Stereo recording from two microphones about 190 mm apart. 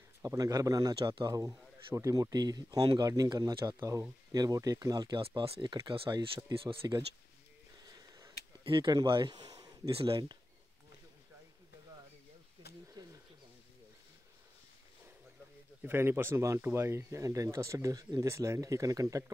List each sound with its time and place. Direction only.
0.2 s speech: 15° right (ahead or behind)
8.6 s speech: 25° right (ahead or behind)
12.6 s a sound: 60° left (ahead or behind)
15.8 s speech: 10° right (ahead or behind)